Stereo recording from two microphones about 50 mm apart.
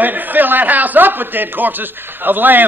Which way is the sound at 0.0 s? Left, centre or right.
Right.